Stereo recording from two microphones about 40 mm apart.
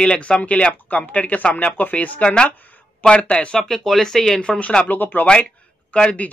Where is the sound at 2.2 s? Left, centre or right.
Left.